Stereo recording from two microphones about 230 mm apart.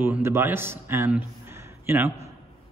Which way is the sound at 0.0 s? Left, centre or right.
Centre.